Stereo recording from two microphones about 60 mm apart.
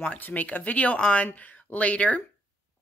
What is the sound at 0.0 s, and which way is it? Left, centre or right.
Speech, left.